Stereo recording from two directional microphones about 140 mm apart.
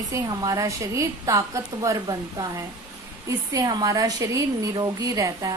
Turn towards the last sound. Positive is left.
turn(degrees=-25)  # may be behind; listen again after turning